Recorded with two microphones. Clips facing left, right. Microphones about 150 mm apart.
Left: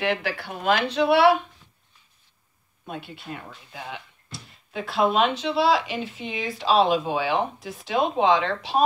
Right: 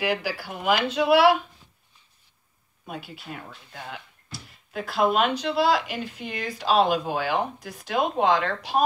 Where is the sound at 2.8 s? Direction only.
Centre (ahead or behind).